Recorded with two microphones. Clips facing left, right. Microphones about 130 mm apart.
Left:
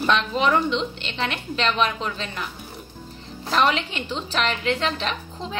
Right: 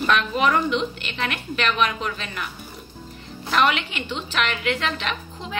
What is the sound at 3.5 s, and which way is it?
A woman's voice, 30° left (ahead or behind).